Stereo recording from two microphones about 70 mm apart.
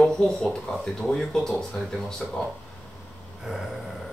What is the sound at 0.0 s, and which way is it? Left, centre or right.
Speech, centre.